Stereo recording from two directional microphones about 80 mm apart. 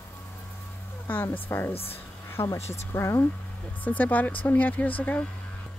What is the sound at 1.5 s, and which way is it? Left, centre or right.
Speech, left.